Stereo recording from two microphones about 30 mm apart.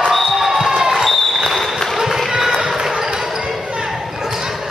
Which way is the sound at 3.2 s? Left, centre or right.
Centre.